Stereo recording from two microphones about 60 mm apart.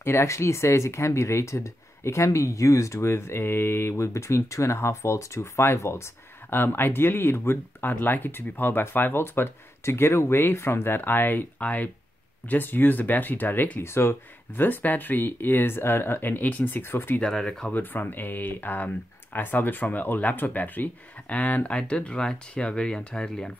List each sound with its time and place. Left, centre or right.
0.0 s speech: left
14.6 s speech: left
17.2 s speech: centre
17.7 s speech: left; by 23.5 s centre